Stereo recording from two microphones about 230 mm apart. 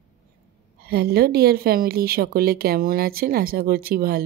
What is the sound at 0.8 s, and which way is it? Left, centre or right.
Speech, right.